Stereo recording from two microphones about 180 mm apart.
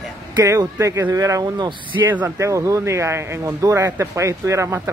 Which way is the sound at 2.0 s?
10° right (ahead or behind).